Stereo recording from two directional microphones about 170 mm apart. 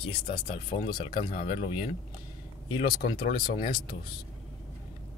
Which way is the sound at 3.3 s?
45° left (ahead or behind).